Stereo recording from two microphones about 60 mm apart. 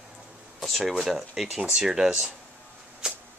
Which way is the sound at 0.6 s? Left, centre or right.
Centre.